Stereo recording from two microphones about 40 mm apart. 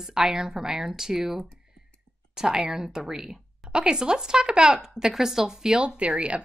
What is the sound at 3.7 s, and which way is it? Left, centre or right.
Speech, centre.